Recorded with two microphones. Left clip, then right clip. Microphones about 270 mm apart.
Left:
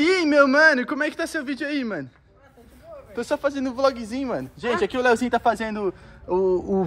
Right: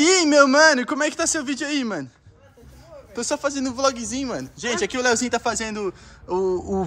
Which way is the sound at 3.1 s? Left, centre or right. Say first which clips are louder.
Even; centre.